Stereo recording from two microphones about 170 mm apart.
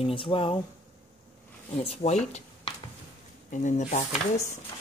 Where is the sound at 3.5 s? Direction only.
45° left (ahead or behind).